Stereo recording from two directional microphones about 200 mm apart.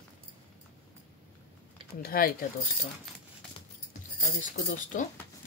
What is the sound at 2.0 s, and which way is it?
Speech, 45° left (ahead or behind).